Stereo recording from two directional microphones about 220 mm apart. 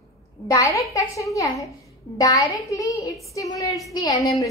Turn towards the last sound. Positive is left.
turn(degrees=15)  # may be behind; listen again after turning